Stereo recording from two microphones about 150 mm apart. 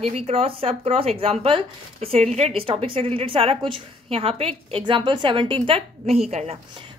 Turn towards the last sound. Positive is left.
turn(degrees=-45)  # may be behind; listen again after turning